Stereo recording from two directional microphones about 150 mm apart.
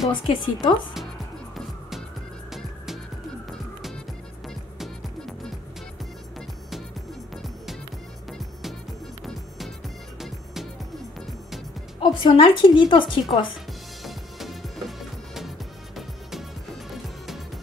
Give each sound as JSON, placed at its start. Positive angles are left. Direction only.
{"t": 0.1, "sound": "a woman's voice", "side_deg": 35}
{"t": 1.5, "sound": "music", "side_deg": 0}
{"t": 4.7, "sound": "music", "side_deg": 0}
{"t": 8.3, "sound": "music", "side_deg": 0}
{"t": 10.1, "sound": "music", "side_deg": 0}
{"t": 12.0, "sound": "a woman's voice", "side_deg": 30}
{"t": 14.0, "sound": "music", "side_deg": 0}